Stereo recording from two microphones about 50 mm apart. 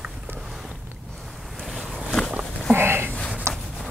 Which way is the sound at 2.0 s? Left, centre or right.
Centre.